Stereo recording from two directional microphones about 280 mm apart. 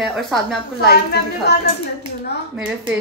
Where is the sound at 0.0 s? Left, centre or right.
Centre.